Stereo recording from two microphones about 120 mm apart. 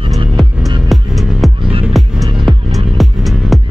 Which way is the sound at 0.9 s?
Centre (ahead or behind).